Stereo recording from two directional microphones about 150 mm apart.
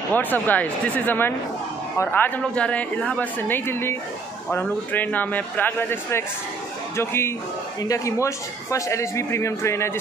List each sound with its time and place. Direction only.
0.1 s a woman's voice: 10° left (ahead or behind)